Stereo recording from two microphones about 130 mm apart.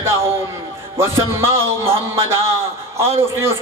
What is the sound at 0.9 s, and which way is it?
A man's voice, 20° right (ahead or behind).